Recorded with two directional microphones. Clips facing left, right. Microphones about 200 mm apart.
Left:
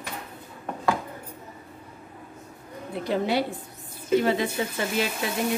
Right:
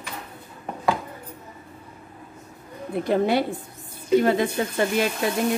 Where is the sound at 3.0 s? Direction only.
50° right (ahead or behind).